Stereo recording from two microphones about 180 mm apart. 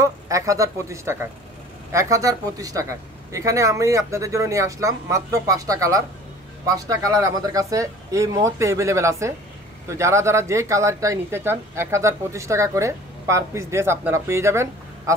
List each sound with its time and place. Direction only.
0.0 s speech: 20° right (ahead or behind)